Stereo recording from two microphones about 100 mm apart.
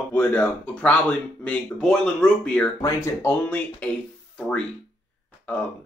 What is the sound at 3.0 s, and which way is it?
Speech, 25° left (ahead or behind).